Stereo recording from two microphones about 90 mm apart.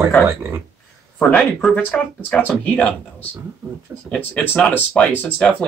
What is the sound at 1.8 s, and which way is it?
Speech, 25° left (ahead or behind).